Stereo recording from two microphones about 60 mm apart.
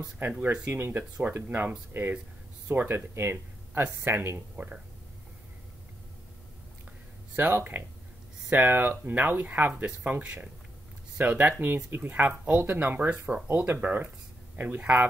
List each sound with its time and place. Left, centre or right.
0.3 s speech: centre; by 4.4 s right
4.6 s speech: right
7.3 s speech: right
13.7 s speech: right